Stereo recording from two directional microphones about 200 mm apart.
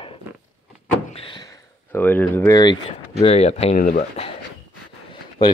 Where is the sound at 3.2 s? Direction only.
30° left (ahead or behind).